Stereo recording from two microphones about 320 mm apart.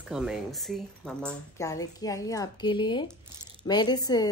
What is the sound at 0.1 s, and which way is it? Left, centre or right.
A woman's voice, centre.